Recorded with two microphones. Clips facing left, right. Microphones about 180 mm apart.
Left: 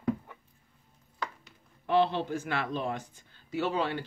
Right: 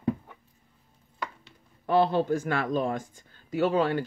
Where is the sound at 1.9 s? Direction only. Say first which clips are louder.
Right 4 dB; 45° right (ahead or behind).